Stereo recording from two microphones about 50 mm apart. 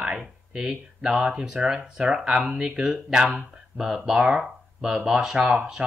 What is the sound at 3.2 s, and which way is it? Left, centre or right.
Speech, right.